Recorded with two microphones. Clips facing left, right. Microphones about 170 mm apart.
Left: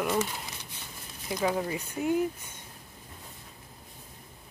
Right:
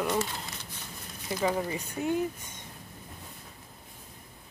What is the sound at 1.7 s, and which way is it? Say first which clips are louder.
Speech: left 1 dB; 10° left (ahead or behind).